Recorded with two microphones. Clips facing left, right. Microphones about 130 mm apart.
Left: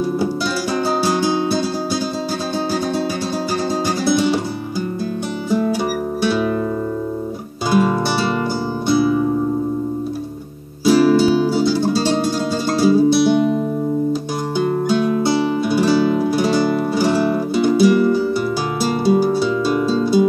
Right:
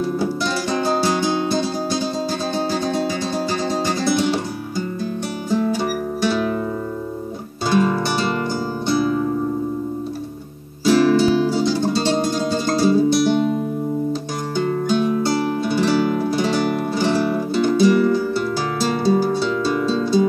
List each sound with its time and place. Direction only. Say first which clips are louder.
0.8 s music: left 1 dB; 10° left (ahead or behind)
7.7 s music: left 2 dB; 10° left (ahead or behind)
10.9 s music: left 2 dB; 10° left (ahead or behind)
15.0 s music: left 1 dB; 50° left (ahead or behind)
15.6 s music: left 2 dB; 10° left (ahead or behind)